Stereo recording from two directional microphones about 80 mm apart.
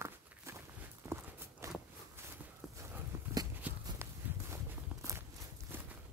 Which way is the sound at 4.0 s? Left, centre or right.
Right.